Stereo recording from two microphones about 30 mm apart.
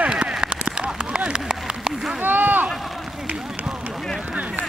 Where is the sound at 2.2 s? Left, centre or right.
Right.